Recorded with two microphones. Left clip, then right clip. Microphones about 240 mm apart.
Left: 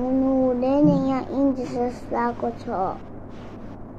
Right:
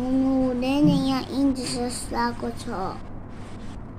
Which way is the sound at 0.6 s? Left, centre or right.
Right.